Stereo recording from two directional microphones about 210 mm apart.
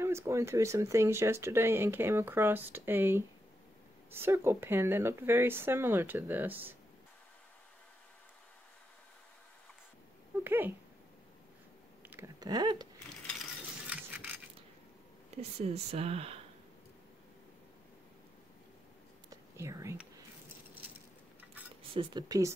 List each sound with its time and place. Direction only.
0.0 s speech: 10° right (ahead or behind)
10.4 s speech: 10° right (ahead or behind)
12.0 s a sound: 10° right (ahead or behind)
13.8 s a sound: 5° right (ahead or behind)
15.6 s speech: 30° right (ahead or behind)
19.5 s speech: 15° right (ahead or behind)
21.9 s speech: 20° right (ahead or behind)